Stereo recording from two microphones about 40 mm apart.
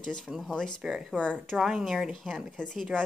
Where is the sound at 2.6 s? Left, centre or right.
Left.